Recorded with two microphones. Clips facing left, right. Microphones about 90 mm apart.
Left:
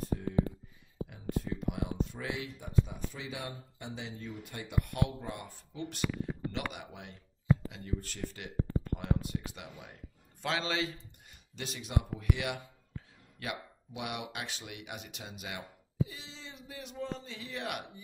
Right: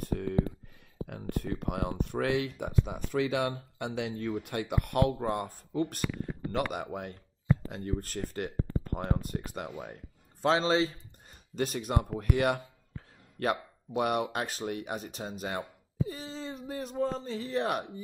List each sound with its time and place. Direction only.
0.0 s a sound: 65° right (ahead or behind)
1.0 s speech: 60° right (ahead or behind)
10.4 s speech: 35° right (ahead or behind)
11.5 s speech: 45° right (ahead or behind)